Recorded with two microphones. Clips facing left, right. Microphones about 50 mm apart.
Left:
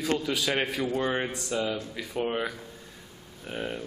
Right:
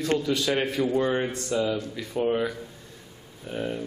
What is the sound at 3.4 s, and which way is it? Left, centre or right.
Speech, centre.